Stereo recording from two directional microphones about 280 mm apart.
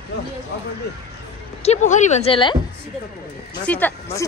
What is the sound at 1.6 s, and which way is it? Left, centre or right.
Speech, left.